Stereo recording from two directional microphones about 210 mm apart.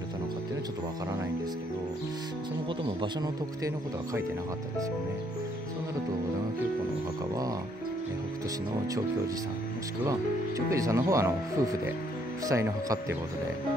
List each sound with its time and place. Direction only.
3.0 s speech: 15° right (ahead or behind)
10.7 s speech: 15° right (ahead or behind)